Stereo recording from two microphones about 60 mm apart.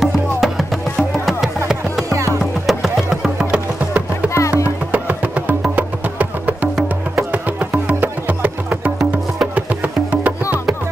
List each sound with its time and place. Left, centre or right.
0.0 s music: centre
2.0 s music: right
2.6 s music: centre
4.3 s music: left
4.9 s music: right